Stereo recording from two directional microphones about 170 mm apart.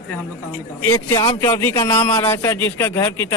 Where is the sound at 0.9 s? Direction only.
20° left (ahead or behind).